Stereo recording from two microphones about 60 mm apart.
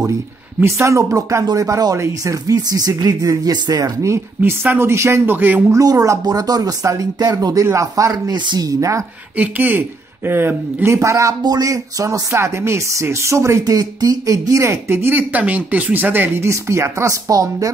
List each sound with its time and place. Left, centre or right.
0.7 s speech: right
2.0 s speech: right
4.4 s speech: right
5.7 s speech: right
7.6 s speech: right
9.4 s speech: right
10.9 s speech: right
13.7 s speech: right
15.0 s speech: right
16.3 s speech: right